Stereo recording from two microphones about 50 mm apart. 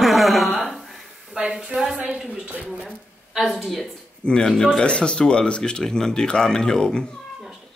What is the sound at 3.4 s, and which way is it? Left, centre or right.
Speech, centre.